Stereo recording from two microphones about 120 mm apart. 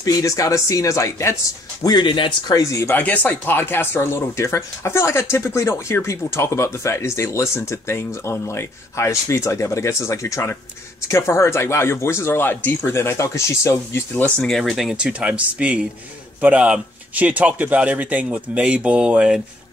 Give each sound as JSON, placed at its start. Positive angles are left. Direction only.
{"t": 0.0, "sound": "speech", "side_deg": 30}
{"t": 1.8, "sound": "speech", "side_deg": 35}
{"t": 14.5, "sound": "speech", "side_deg": 0}